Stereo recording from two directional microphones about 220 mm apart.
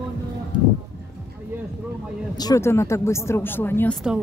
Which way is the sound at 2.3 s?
15° left (ahead or behind).